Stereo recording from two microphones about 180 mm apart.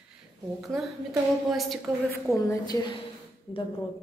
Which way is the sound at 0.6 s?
Centre (ahead or behind).